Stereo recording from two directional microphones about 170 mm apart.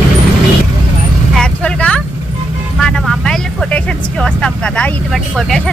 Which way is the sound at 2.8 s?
5° left (ahead or behind).